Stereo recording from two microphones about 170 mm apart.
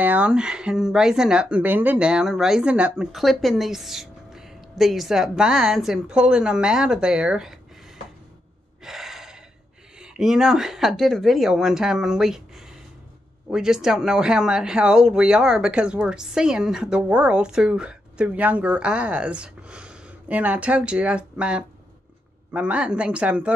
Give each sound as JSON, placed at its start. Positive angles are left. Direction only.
{"t": 0.0, "sound": "speech", "side_deg": -10}
{"t": 8.8, "sound": "gasp", "side_deg": 0}
{"t": 9.9, "sound": "a woman's voice", "side_deg": -5}